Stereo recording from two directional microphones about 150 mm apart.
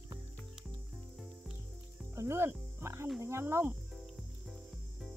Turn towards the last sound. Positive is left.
turn(degrees=0)  # may be behind; listen again after turning